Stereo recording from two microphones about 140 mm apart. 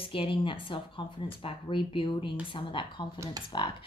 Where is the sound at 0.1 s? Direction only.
40° left (ahead or behind).